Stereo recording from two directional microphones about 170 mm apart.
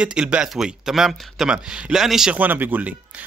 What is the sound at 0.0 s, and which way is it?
A man's voice, 5° right (ahead or behind).